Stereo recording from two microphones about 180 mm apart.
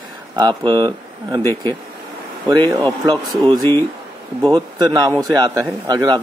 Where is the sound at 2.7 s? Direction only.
25° right (ahead or behind).